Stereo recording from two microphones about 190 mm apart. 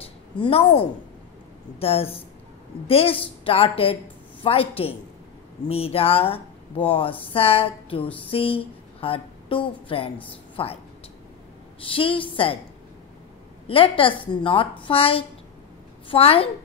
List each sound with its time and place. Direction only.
0.0 s a sound: 30° left (ahead or behind)
1.8 s a woman's voice: 30° left (ahead or behind)
11.8 s speech: 30° left (ahead or behind)
13.7 s speech: 30° left (ahead or behind)